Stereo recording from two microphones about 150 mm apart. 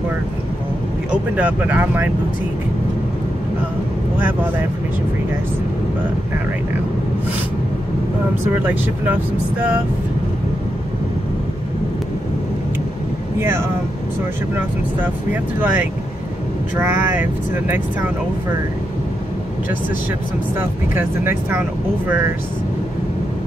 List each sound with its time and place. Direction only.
1.1 s speech: 10° right (ahead or behind)
13.4 s speech: 15° right (ahead or behind)
15.6 s speech: 15° right (ahead or behind)
20.5 s speech: 15° right (ahead or behind)